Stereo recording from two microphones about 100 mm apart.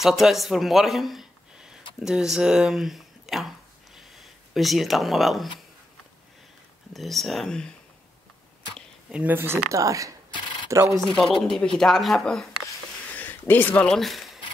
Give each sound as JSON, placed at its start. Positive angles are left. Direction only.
{"t": 0.0, "sound": "speech", "side_deg": 0}
{"t": 6.9, "sound": "speech", "side_deg": 0}
{"t": 9.1, "sound": "speech", "side_deg": -15}
{"t": 9.7, "sound": "speech", "side_deg": -35}
{"t": 11.4, "sound": "speech", "side_deg": 5}
{"t": 13.2, "sound": "a sound", "side_deg": 20}
{"t": 13.8, "sound": "speech", "side_deg": 0}